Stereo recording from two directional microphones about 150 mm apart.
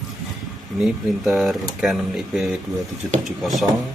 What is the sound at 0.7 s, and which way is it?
Speech, 5° right (ahead or behind).